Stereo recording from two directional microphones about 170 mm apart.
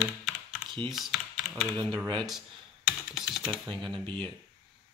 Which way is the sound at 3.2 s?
Centre (ahead or behind).